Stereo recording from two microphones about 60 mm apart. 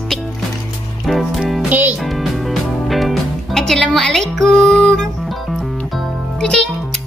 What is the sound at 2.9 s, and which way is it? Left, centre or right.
Music, centre.